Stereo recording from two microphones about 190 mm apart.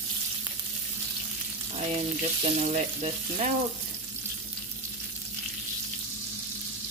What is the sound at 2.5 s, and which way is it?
Frying, 35° right (ahead or behind).